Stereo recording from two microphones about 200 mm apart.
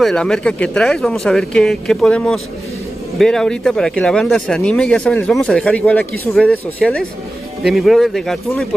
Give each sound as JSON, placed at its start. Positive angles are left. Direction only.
{"t": 0.0, "sound": "speech", "side_deg": 5}